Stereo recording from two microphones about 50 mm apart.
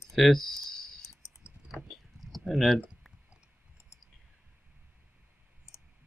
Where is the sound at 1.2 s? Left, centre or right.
Left.